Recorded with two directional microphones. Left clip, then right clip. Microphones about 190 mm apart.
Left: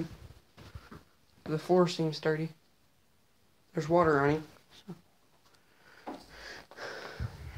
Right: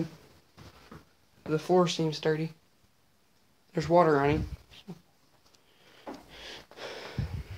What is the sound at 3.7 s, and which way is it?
Speech, 15° right (ahead or behind).